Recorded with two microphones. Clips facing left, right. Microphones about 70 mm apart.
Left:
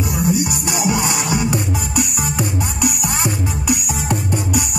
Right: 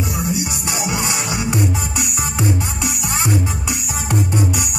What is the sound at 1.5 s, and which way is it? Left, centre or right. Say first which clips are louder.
Music: even; right.